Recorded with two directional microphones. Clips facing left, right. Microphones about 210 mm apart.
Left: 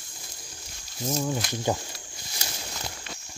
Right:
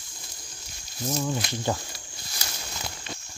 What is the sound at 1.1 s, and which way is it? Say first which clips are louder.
Speech: even; 10° left (ahead or behind).